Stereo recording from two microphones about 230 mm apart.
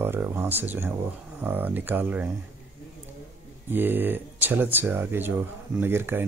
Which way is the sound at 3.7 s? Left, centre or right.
Centre.